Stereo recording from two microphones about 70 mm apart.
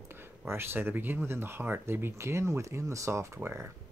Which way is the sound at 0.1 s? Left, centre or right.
Right.